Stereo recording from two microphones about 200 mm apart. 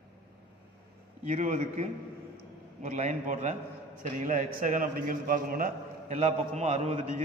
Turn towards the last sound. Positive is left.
turn(degrees=-35)  # may be behind; listen again after turning